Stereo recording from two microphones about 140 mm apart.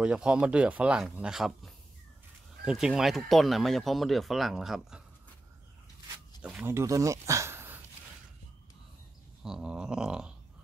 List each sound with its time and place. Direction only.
0.0 s speech: 5° right (ahead or behind)
6.4 s speech: 5° right (ahead or behind)
6.7 s speech: 20° right (ahead or behind)
9.4 s speech: 5° right (ahead or behind)